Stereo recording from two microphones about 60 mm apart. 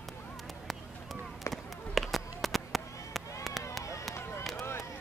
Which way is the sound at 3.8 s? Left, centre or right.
Left.